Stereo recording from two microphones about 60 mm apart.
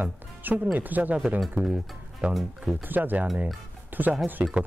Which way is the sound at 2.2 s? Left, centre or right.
Centre.